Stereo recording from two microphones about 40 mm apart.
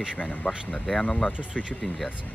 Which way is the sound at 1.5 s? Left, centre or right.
Left.